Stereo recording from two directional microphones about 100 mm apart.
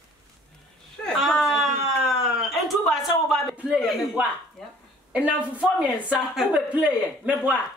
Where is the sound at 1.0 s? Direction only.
Centre (ahead or behind).